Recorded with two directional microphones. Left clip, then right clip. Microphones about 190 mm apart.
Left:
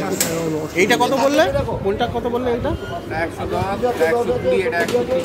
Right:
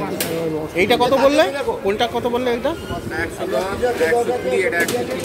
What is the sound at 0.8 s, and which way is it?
Speech, 5° right (ahead or behind).